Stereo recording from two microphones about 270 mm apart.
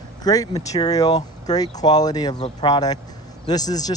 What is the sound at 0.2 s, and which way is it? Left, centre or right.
Speech, centre.